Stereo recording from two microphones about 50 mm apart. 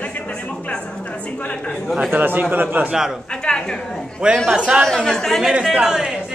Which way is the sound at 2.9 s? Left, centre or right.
Centre.